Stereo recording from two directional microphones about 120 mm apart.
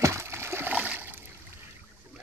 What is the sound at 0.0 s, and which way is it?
Splash, 20° right (ahead or behind).